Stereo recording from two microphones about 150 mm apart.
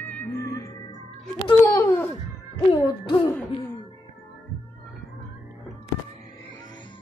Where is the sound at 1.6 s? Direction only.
20° left (ahead or behind).